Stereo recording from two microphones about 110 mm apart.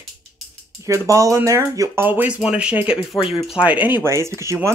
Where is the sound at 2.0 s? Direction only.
15° right (ahead or behind).